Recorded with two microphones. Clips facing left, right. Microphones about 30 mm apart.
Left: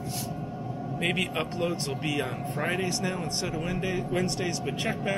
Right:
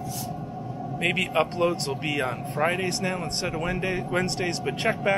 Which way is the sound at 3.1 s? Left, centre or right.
Right.